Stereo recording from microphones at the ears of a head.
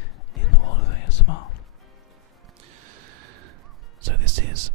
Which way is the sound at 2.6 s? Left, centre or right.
Right.